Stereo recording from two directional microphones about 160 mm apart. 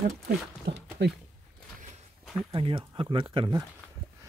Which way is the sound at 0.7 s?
75° right (ahead or behind).